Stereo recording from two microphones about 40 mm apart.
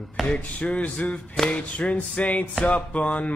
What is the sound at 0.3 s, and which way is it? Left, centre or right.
Speech, left.